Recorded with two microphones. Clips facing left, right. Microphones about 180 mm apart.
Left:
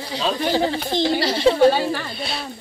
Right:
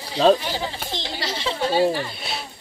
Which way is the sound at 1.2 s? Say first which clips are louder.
Left 10 dB; 40° left (ahead or behind).